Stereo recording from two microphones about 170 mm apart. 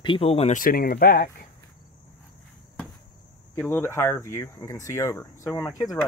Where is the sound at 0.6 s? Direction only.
60° left (ahead or behind).